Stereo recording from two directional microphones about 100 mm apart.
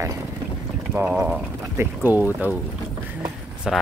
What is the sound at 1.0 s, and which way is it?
Speech, 5° right (ahead or behind).